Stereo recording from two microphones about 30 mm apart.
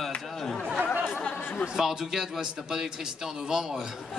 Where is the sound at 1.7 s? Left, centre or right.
Centre.